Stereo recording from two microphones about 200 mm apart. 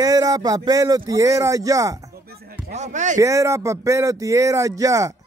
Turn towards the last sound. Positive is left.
turn(degrees=-15)  # may be behind; listen again after turning